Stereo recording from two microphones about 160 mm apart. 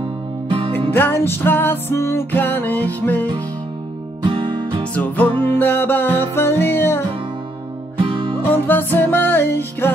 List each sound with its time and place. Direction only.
0.7 s music: 10° left (ahead or behind)
4.2 s music: 30° right (ahead or behind)
4.9 s music: 10° left (ahead or behind)
8.0 s music: 30° right (ahead or behind)
8.5 s music: 10° left (ahead or behind)